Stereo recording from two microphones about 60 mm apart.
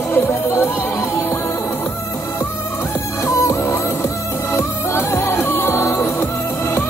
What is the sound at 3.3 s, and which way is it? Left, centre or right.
Music, left.